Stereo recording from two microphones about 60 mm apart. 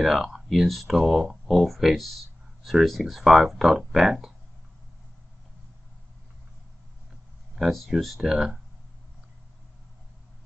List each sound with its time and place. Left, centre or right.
0.0 s speech: centre
7.5 s speech: centre